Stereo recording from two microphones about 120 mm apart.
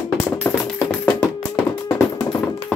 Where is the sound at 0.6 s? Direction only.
5° left (ahead or behind).